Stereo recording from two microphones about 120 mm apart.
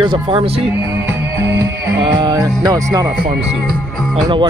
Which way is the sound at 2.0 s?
35° right (ahead or behind).